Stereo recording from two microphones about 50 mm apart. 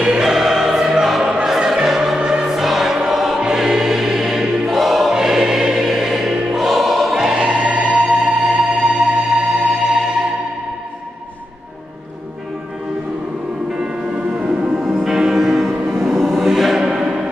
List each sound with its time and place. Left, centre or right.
0.0 s choir: centre
2.1 s music: centre
3.1 s choir: centre
3.4 s music: centre
4.6 s choir: centre
7.2 s choir: centre
8.0 s music: centre
13.7 s music: centre